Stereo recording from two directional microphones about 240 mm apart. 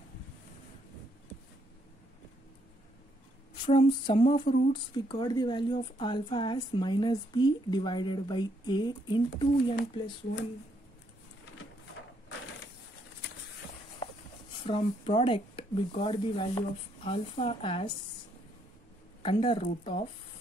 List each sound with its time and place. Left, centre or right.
3.6 s speech: left
14.6 s speech: left
19.2 s speech: left